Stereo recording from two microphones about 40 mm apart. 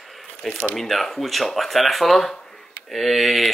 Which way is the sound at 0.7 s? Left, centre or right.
Centre.